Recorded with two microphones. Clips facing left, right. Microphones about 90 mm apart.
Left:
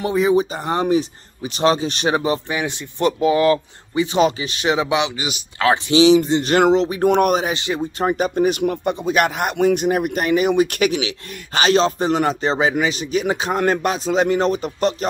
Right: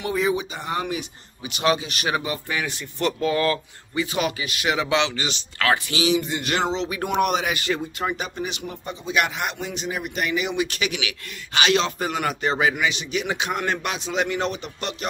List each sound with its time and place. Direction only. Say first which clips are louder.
0.1 s speech: left 6 dB; 20° left (ahead or behind)
0.4 s speech: left 8 dB; 35° left (ahead or behind); by 5.4 s 10° left (ahead or behind)
5.6 s a man's voice: left 8 dB; 20° left (ahead or behind)
7.2 s speech: left 1 dB; 45° left (ahead or behind)
7.4 s speech: left 2 dB; 25° left (ahead or behind)
8.0 s speech: left 9 dB; 45° left (ahead or behind)
10.9 s a man's voice: left 7 dB; 30° left (ahead or behind)